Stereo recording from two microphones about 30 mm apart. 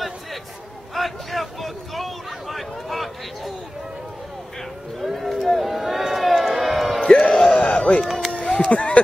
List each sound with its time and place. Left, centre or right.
0.9 s a sound: centre
5.0 s a sound: centre
7.0 s music: left
8.0 s run: centre
8.3 s run: left
8.7 s speech: left